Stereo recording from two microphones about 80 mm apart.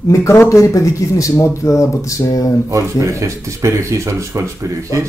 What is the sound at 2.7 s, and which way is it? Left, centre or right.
Speech, right.